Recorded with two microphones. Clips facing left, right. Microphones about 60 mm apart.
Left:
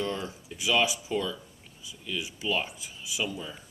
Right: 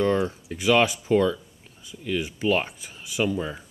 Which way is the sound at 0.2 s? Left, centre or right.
Right.